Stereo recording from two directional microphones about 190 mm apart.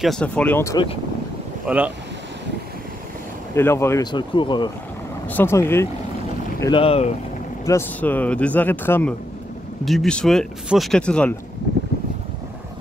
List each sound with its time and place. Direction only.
0.0 s speech: 5° left (ahead or behind)
1.7 s speech: 5° right (ahead or behind)
3.5 s speech: 15° left (ahead or behind)
5.3 s speech: 10° left (ahead or behind)
6.6 s speech: 25° left (ahead or behind)
7.6 s speech: 15° left (ahead or behind)